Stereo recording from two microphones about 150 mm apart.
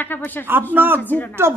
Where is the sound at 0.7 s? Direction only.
15° right (ahead or behind).